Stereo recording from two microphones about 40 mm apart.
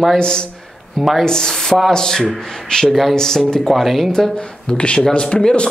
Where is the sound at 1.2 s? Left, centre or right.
Centre.